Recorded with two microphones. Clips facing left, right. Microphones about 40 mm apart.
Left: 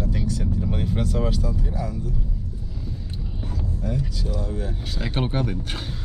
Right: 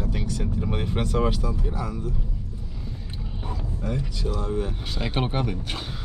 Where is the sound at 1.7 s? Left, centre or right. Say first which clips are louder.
Left 1 dB; centre.